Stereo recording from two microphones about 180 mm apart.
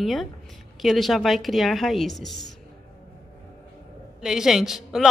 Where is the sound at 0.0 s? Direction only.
Centre (ahead or behind).